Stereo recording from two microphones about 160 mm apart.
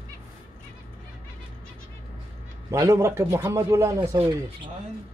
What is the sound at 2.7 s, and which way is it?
Speech, 15° right (ahead or behind).